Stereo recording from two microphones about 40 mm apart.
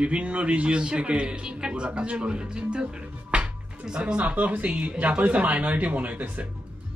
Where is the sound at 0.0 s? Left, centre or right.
Right.